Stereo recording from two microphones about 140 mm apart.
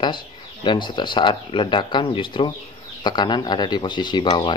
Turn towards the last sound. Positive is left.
turn(degrees=35)  # may be behind; listen again after turning